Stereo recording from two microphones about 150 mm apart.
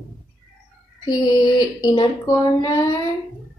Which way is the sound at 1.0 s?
25° left (ahead or behind).